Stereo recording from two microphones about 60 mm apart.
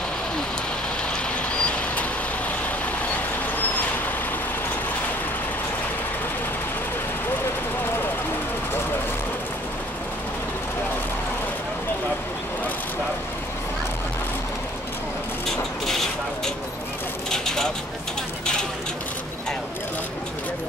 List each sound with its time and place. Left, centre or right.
1.5 s vehicle: centre